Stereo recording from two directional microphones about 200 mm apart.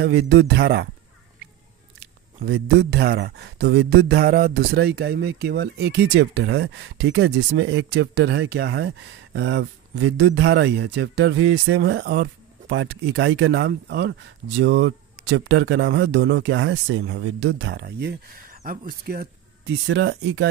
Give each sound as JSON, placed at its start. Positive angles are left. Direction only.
{"t": 0.0, "sound": "speech", "side_deg": -55}
{"t": 2.5, "sound": "speech", "side_deg": -55}
{"t": 19.6, "sound": "speech", "side_deg": -65}